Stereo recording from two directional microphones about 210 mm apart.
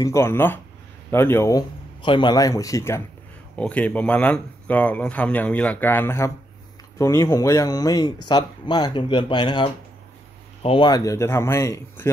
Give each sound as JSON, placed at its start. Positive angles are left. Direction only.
{"t": 0.0, "sound": "speech", "side_deg": 15}